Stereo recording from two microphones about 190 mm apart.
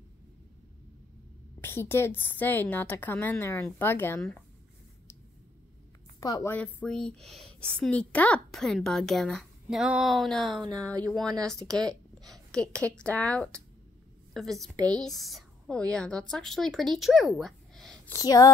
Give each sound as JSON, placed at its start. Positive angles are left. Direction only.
{"t": 1.6, "sound": "a woman's voice", "side_deg": 10}
{"t": 6.1, "sound": "a woman's voice", "side_deg": 20}
{"t": 6.5, "sound": "a woman's voice", "side_deg": 5}
{"t": 18.1, "sound": "a woman's voice", "side_deg": 20}